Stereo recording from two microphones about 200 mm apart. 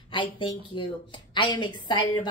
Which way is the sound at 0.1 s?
25° left (ahead or behind).